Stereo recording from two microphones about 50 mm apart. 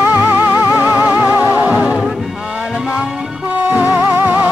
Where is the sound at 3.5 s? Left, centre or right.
Right.